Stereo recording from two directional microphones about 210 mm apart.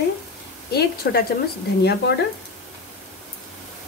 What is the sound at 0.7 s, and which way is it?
Speech, 50° left (ahead or behind).